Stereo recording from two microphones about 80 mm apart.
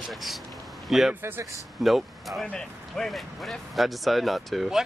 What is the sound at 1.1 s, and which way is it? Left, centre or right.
Speech, right.